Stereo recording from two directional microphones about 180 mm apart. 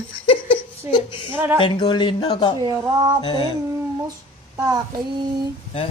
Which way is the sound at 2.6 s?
20° right (ahead or behind).